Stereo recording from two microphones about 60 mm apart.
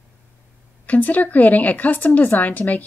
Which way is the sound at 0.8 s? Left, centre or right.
Left.